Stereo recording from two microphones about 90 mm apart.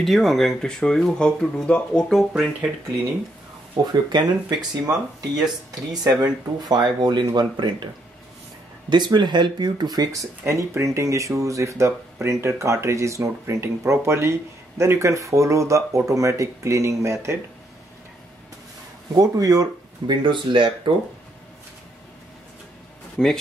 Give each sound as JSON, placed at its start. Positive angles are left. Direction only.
{"t": 0.0, "sound": "speech", "side_deg": 0}
{"t": 3.8, "sound": "speech", "side_deg": -50}
{"t": 6.0, "sound": "speech", "side_deg": -45}
{"t": 8.9, "sound": "speech", "side_deg": -55}
{"t": 10.4, "sound": "speech", "side_deg": -30}
{"t": 19.1, "sound": "speech", "side_deg": -45}
{"t": 20.2, "sound": "speech", "side_deg": -65}
{"t": 23.2, "sound": "speech", "side_deg": 5}